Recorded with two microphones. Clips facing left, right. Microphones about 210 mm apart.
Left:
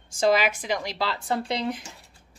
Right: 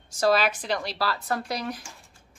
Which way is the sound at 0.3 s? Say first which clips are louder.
Even; 15° left (ahead or behind).